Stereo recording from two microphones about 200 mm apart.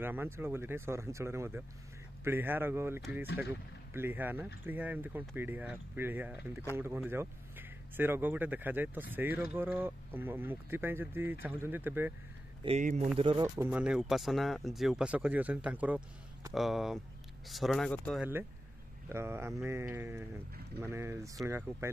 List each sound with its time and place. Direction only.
0.0 s speech: 10° right (ahead or behind)
12.6 s speech: 35° right (ahead or behind)
13.6 s speech: 5° right (ahead or behind)
19.0 s speech: 10° right (ahead or behind)